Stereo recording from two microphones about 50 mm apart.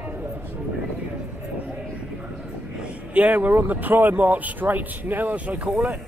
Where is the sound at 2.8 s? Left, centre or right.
Right.